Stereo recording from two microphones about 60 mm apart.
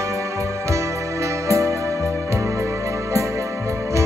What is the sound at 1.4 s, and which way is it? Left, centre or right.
Music, right.